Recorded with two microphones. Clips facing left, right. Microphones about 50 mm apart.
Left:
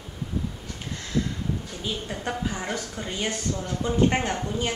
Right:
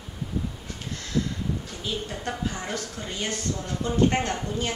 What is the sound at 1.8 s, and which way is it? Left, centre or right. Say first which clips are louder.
A woman's voice: left 1 dB; centre.